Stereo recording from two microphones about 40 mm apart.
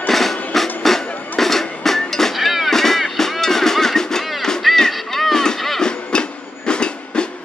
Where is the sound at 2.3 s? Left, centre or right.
Centre.